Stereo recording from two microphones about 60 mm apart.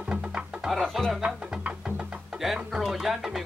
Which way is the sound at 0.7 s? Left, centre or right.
Centre.